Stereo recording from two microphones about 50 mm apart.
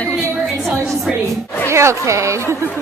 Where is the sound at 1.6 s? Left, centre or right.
Right.